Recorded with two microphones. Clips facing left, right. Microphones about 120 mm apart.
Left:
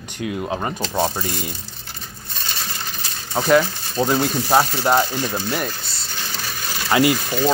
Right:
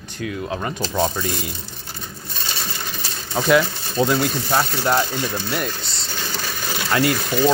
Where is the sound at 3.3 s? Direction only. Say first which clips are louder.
Left 1 dB; centre (ahead or behind).